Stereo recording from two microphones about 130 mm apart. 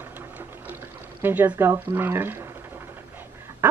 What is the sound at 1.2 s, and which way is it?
Speech, 15° right (ahead or behind).